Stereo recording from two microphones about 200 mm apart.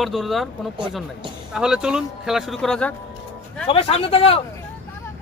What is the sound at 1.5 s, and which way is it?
A man's voice, 5° right (ahead or behind).